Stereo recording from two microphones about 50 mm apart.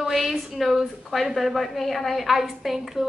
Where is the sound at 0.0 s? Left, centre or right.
Centre.